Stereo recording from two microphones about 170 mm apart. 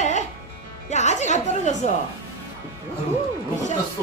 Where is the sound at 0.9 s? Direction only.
45° left (ahead or behind).